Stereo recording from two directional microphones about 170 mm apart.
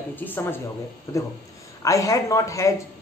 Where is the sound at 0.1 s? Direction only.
10° left (ahead or behind).